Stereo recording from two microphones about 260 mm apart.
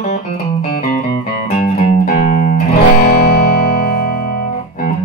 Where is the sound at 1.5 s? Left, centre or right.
Left.